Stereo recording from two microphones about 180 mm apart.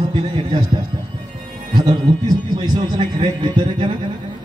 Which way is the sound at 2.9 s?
25° right (ahead or behind).